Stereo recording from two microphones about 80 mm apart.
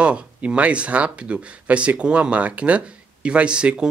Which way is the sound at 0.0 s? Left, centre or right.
Centre.